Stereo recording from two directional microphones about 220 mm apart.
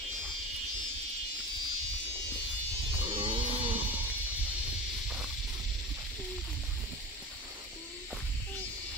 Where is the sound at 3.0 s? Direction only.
25° right (ahead or behind).